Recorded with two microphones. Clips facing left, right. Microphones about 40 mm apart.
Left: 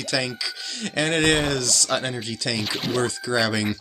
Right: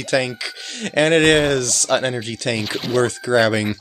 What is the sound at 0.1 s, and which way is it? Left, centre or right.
Speech, right.